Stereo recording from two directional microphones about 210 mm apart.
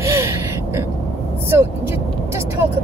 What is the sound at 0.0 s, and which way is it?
Gasp, 15° right (ahead or behind).